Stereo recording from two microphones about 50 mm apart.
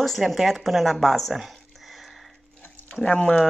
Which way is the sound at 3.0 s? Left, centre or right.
Centre.